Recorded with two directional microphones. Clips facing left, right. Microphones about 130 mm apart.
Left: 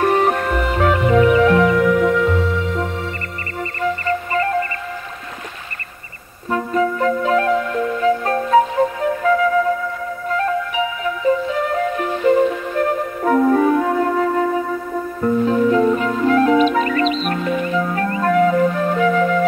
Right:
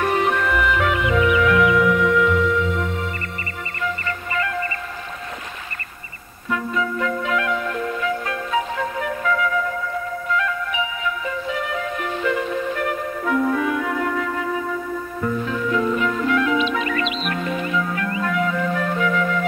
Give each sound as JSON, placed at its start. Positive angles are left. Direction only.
{"t": 0.0, "sound": "music", "side_deg": 40}
{"t": 3.8, "sound": "music", "side_deg": 35}
{"t": 6.5, "sound": "music", "side_deg": 40}
{"t": 9.0, "sound": "flute", "side_deg": 35}
{"t": 10.3, "sound": "music", "side_deg": 35}